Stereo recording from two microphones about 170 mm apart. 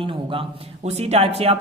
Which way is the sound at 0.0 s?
30° right (ahead or behind).